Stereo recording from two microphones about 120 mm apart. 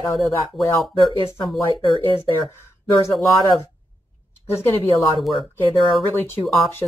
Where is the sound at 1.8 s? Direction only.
50° left (ahead or behind).